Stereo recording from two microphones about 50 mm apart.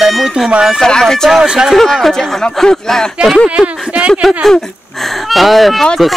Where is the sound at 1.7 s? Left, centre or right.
Centre.